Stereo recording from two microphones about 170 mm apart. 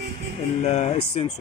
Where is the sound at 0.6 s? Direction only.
40° left (ahead or behind).